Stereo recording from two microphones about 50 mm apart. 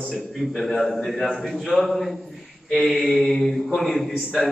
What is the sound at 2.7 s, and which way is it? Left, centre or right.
Mantra, centre.